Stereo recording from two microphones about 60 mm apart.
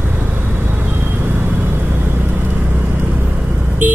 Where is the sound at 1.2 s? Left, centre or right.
Right.